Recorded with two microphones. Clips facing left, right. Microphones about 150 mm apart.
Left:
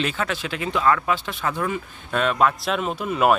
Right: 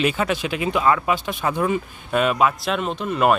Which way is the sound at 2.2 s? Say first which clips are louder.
Right 1 dB; 10° right (ahead or behind).